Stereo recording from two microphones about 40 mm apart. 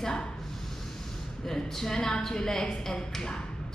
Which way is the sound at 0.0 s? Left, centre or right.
Centre.